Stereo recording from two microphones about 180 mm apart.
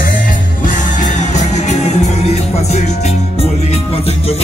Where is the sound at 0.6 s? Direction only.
45° left (ahead or behind).